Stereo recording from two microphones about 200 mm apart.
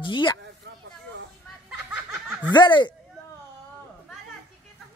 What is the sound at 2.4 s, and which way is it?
Speech, 20° left (ahead or behind).